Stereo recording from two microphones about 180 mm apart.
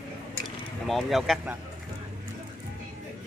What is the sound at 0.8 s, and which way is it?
Speech, centre (ahead or behind).